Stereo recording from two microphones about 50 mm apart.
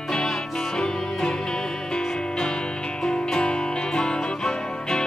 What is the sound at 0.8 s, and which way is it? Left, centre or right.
Music, centre.